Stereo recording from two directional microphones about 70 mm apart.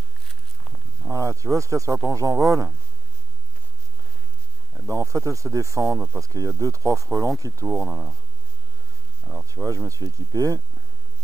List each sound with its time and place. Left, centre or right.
1.1 s speech: right
4.7 s speech: right
7.8 s speech: right
9.5 s speech: right